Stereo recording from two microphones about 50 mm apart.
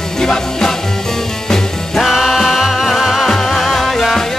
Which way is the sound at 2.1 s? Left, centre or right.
Centre.